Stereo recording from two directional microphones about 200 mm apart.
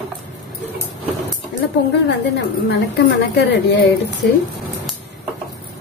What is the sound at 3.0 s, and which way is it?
A woman's voice, 60° left (ahead or behind).